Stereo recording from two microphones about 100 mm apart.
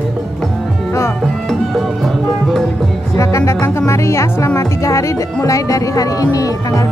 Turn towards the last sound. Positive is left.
turn(degrees=35)  # may be behind; listen again after turning